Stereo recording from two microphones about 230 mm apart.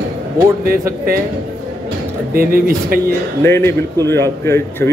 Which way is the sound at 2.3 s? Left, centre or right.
Right.